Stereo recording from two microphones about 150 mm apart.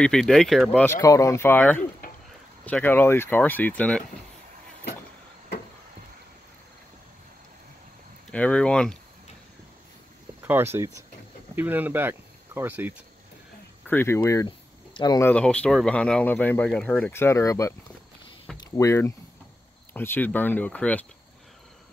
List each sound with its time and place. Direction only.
0.0 s speech: 5° left (ahead or behind)
0.9 s speech: 20° left (ahead or behind)
8.3 s speech: 5° left (ahead or behind)
10.4 s speech: 15° right (ahead or behind)
13.8 s speech: 15° left (ahead or behind)
15.2 s speech: 10° left (ahead or behind)
18.8 s speech: 20° left (ahead or behind)